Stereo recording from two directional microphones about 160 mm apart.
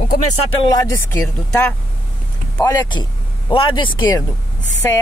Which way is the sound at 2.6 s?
25° left (ahead or behind).